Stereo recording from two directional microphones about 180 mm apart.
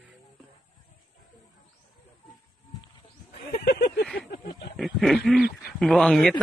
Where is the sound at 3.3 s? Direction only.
60° left (ahead or behind).